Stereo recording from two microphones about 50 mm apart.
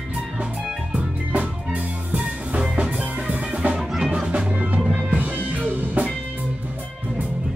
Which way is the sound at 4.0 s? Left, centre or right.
Centre.